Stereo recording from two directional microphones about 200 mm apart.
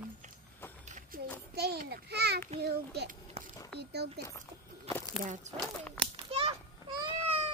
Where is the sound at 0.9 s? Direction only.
40° right (ahead or behind).